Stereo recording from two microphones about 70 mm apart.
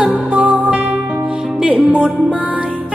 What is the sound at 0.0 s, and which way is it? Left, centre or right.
Music, right.